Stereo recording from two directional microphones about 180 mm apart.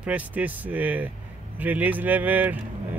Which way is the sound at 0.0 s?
10° right (ahead or behind).